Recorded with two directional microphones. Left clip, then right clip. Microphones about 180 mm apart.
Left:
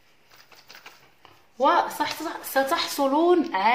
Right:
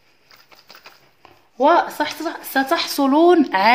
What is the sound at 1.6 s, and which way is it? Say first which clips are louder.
Speech: right 5 dB; 40° right (ahead or behind).